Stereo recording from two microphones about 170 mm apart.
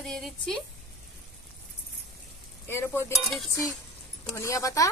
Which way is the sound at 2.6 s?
15° left (ahead or behind).